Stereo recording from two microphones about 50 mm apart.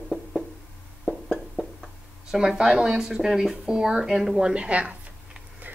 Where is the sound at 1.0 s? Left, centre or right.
Centre.